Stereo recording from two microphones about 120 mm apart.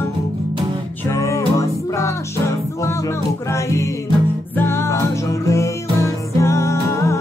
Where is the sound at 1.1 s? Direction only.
25° left (ahead or behind).